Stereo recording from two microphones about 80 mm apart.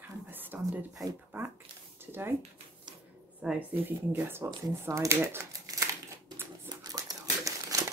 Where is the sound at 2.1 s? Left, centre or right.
Right.